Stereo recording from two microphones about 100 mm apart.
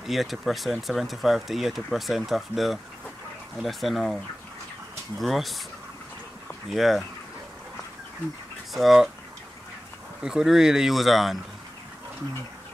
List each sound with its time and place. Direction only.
0.0 s speech: centre (ahead or behind)
5.2 s speech: centre (ahead or behind)
6.7 s speech: centre (ahead or behind)
8.7 s speech: centre (ahead or behind)
10.2 s speech: 5° right (ahead or behind)